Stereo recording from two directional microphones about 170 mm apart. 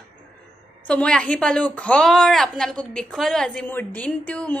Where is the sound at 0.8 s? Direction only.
5° left (ahead or behind).